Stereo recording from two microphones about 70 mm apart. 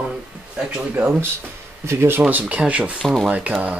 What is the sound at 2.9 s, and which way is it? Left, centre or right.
Speech, centre.